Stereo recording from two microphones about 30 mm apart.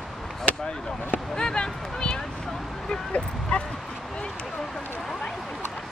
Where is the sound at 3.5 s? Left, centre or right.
Left.